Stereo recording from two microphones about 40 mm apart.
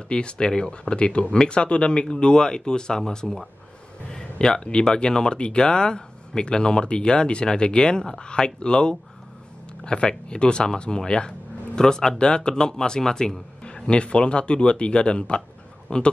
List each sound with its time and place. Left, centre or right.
0.1 s speech: left